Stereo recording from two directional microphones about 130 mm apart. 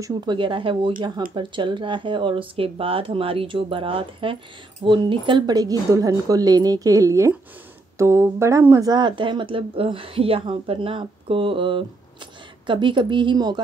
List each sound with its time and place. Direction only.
0.1 s speech: 35° right (ahead or behind)